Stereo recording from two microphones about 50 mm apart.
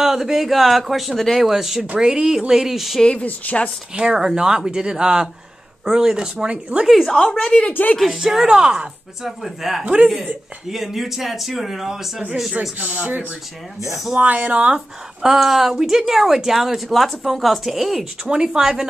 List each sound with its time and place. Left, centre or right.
0.0 s speech: centre
1.5 s speech: centre
3.2 s speech: left
3.9 s speech: centre
7.1 s speech: centre
8.0 s speech: centre
9.4 s speech: centre
12.7 s speech: right
15.2 s speech: centre
18.3 s speech: centre